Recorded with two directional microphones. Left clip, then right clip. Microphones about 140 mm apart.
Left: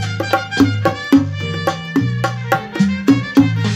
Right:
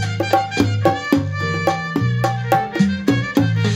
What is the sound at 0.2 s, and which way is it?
Music, 10° left (ahead or behind).